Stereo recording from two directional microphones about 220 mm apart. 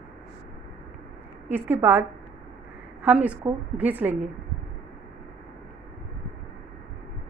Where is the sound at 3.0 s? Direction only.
5° right (ahead or behind).